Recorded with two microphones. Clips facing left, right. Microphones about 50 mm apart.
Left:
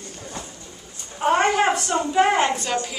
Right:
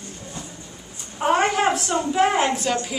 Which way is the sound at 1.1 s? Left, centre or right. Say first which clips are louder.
Left 1 dB; centre.